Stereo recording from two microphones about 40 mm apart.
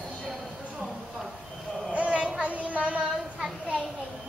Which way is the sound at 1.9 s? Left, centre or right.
Right.